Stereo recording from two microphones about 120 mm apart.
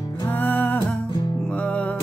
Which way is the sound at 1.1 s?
40° left (ahead or behind).